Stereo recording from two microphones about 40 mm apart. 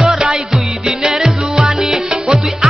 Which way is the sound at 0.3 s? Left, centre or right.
Centre.